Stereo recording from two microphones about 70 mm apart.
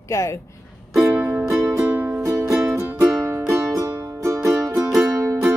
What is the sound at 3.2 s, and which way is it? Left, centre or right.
Music, right.